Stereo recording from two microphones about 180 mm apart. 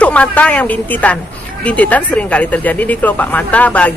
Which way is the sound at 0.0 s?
5° left (ahead or behind).